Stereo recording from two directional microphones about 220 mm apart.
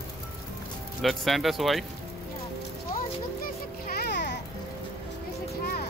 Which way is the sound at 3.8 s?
45° left (ahead or behind).